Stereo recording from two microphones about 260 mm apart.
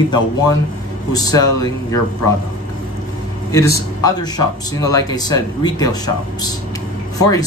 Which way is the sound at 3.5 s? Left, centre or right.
Centre.